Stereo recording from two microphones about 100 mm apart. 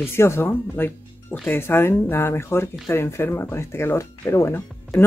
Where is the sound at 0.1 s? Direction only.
25° left (ahead or behind).